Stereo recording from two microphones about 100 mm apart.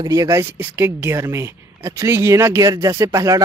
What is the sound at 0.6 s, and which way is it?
Speech, 25° right (ahead or behind).